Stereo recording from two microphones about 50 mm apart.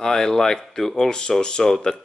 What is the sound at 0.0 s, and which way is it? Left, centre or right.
Speech, centre.